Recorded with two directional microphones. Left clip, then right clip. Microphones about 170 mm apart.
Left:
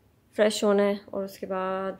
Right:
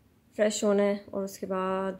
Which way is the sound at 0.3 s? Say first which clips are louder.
Left 3 dB; 10° left (ahead or behind).